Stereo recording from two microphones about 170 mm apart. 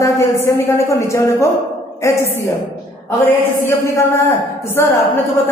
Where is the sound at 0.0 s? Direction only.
15° left (ahead or behind).